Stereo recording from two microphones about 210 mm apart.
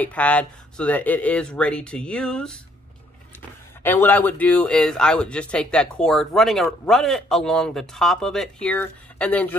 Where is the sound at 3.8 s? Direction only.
10° left (ahead or behind).